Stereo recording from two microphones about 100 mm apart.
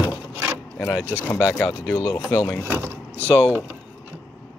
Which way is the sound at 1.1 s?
20° left (ahead or behind).